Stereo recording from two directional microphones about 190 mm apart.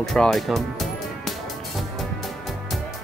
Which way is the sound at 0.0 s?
Centre (ahead or behind).